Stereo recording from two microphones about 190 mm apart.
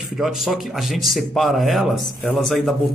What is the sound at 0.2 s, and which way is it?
Speech, centre (ahead or behind).